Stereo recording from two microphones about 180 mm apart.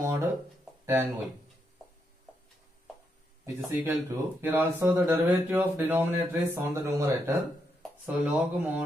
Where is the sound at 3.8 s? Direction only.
15° right (ahead or behind).